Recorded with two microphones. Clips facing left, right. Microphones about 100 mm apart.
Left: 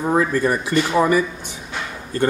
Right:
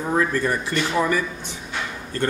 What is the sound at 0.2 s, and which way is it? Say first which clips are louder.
Speech: left 3 dB; 15° left (ahead or behind).